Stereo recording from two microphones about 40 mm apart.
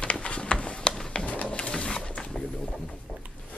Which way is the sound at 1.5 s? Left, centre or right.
Left.